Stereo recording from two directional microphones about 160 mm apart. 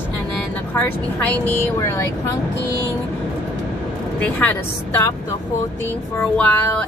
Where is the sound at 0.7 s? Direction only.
10° left (ahead or behind).